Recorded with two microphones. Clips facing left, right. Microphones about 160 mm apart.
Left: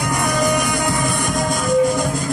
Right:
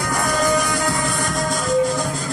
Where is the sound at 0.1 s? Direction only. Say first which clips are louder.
Even; 15° left (ahead or behind).